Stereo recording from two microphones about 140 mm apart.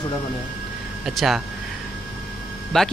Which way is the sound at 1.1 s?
Centre (ahead or behind).